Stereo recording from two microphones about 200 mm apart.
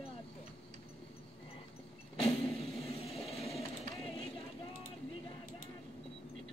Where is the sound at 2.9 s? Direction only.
30° left (ahead or behind).